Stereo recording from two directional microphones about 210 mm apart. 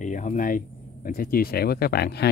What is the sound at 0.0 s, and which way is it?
Speech, 35° left (ahead or behind).